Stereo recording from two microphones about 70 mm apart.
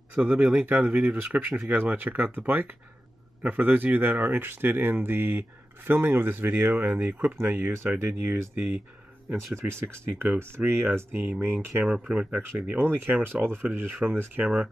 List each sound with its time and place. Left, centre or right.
0.1 s speech: right
9.6 s speech: right
11.8 s speech: centre
12.4 s speech: right